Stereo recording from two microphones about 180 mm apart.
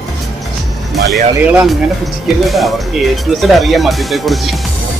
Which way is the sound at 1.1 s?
Centre (ahead or behind).